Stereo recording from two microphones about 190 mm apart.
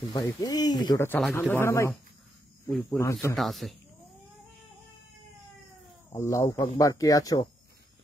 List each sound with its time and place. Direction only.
0.1 s speech: 20° left (ahead or behind)
1.0 s speech: 10° left (ahead or behind)
3.0 s speech: 15° left (ahead or behind)
3.3 s speech: centre (ahead or behind)
6.1 s speech: 15° left (ahead or behind)